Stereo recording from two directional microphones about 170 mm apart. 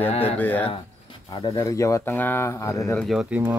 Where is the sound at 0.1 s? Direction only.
35° left (ahead or behind).